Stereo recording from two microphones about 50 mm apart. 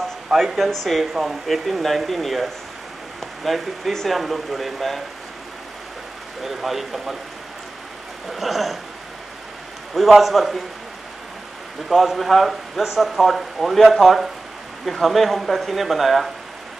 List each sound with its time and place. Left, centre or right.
0.4 s speech: centre
6.4 s speech: centre
8.3 s speech: centre
9.9 s speech: centre
11.9 s speech: centre